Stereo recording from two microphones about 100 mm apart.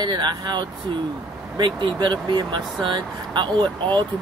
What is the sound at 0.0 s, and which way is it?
Speech, 50° right (ahead or behind).